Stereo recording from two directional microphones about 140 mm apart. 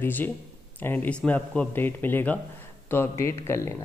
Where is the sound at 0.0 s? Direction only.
15° left (ahead or behind).